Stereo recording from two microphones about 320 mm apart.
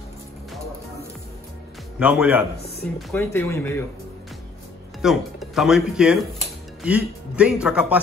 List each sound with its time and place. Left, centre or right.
2.0 s speech: centre
2.6 s speech: centre
3.1 s speech: centre
5.0 s speech: centre